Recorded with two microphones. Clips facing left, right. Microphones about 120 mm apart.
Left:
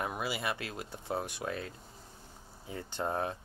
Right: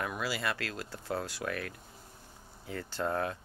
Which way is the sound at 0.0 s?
20° left (ahead or behind).